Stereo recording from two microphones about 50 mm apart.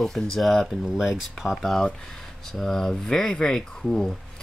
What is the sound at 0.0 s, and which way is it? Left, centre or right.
Speech, centre.